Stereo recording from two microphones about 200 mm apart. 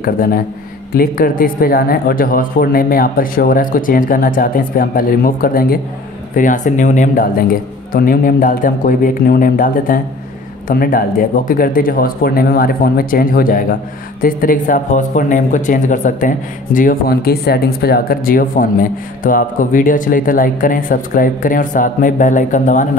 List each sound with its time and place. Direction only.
0.0 s speech: 45° left (ahead or behind)